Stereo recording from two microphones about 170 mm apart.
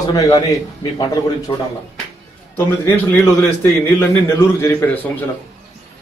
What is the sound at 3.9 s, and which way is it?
A man's voice, 15° left (ahead or behind).